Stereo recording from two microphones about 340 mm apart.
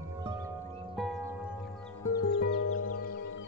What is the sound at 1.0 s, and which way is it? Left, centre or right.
Music, centre.